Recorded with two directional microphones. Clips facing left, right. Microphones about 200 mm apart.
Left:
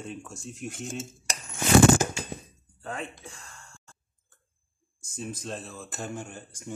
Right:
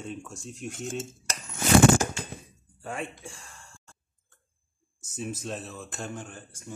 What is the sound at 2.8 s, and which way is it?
Speech, 10° right (ahead or behind).